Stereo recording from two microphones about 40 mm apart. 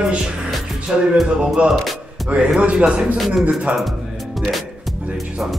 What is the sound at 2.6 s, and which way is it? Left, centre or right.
A man's voice, right.